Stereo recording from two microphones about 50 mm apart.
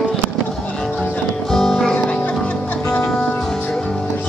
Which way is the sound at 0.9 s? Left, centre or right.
Left.